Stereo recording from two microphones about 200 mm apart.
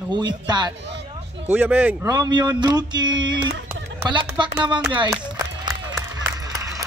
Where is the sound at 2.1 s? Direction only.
20° right (ahead or behind).